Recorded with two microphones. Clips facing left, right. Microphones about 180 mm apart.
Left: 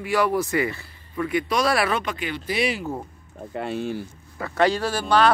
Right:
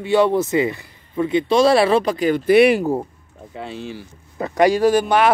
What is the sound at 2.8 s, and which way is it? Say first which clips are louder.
Speech: right 9 dB; 35° right (ahead or behind).